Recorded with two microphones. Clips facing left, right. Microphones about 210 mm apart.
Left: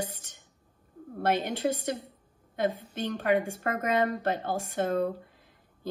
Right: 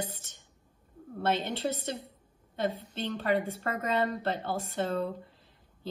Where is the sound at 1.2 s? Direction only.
10° left (ahead or behind).